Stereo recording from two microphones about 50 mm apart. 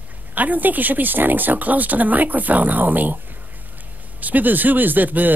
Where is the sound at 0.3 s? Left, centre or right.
Right.